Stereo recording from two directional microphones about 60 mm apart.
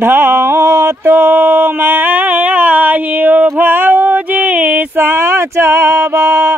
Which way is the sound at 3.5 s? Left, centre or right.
Right.